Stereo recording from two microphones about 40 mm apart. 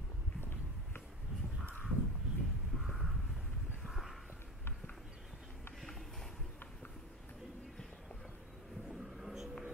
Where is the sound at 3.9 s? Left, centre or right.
Centre.